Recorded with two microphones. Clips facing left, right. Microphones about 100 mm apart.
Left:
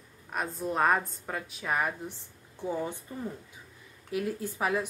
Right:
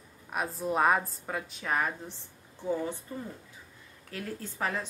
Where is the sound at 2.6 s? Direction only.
20° left (ahead or behind).